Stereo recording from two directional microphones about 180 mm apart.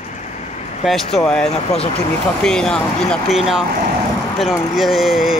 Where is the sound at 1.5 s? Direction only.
35° left (ahead or behind).